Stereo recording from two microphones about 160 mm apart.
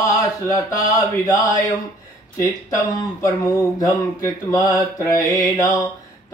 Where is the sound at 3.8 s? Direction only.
20° left (ahead or behind).